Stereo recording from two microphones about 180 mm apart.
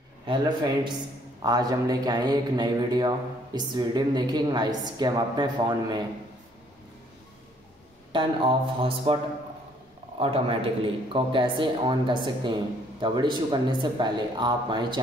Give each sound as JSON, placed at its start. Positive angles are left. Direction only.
{"t": 0.3, "sound": "a man's voice", "side_deg": -25}
{"t": 8.1, "sound": "a man's voice", "side_deg": -30}
{"t": 10.1, "sound": "a man's voice", "side_deg": -30}